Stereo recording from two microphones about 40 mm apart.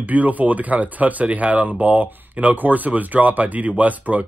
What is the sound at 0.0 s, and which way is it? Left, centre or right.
Speech, right.